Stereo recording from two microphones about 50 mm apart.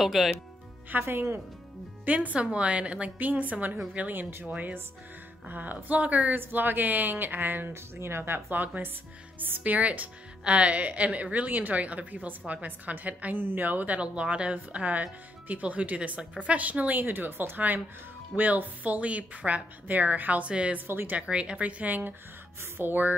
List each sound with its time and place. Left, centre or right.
0.0 s speech: centre
1.0 s speech: right
2.0 s a woman's voice: right
4.1 s speech: right
4.5 s a woman's voice: right
7.7 s speech: right
8.2 s speech: right
9.6 s a woman's voice: right
17.0 s a woman's voice: right
20.8 s speech: right
21.1 s a woman's voice: right